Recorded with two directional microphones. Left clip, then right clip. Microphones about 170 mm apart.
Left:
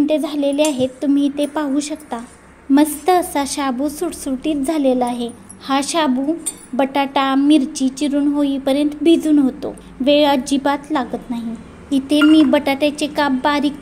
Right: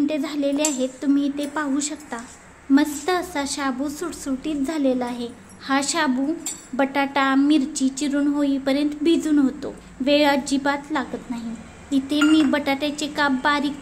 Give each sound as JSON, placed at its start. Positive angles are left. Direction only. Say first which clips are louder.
{"t": 0.0, "sound": "a woman's voice", "louder": "left 6 dB", "side_deg": 20}